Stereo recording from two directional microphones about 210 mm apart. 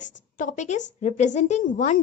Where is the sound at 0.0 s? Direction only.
35° left (ahead or behind).